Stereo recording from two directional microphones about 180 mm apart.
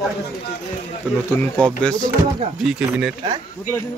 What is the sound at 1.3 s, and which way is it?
Speech, 10° left (ahead or behind).